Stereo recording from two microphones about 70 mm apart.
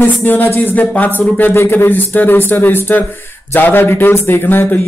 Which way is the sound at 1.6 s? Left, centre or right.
Left.